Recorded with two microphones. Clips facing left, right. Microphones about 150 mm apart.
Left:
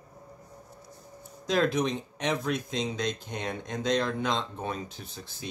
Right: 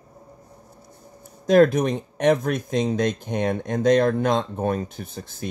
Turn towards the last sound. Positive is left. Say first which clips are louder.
# right 8 dB
turn(degrees=-50)  # may be behind; listen again after turning